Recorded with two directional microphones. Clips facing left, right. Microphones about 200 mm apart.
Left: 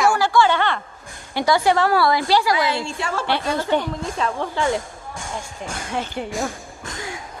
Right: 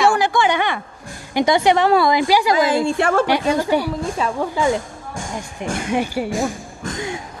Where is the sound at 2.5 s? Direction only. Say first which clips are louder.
Right 6 dB; 50° right (ahead or behind).